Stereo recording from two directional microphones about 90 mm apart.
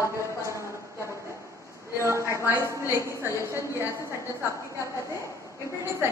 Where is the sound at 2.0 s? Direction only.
30° right (ahead or behind).